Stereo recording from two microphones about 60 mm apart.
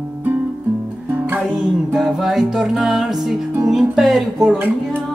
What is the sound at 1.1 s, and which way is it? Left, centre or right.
Music, right.